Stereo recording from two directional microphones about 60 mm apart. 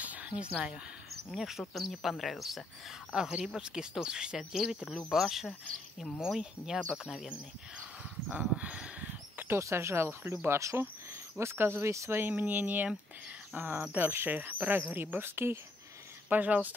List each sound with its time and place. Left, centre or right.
0.0 s a sound: right
1.3 s speech: centre
3.1 s speech: centre
8.3 s speech: right
9.6 s speech: right
15.0 s speech: right
16.3 s speech: right